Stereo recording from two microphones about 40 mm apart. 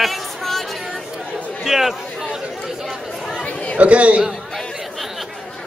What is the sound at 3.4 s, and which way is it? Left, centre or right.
Chatter, left.